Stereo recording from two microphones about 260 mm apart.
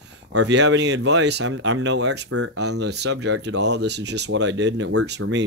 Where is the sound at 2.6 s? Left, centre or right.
Right.